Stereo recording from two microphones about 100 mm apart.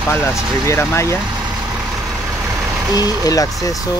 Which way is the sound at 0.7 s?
30° left (ahead or behind).